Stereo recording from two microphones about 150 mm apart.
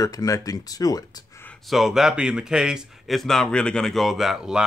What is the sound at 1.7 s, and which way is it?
Speech, centre (ahead or behind).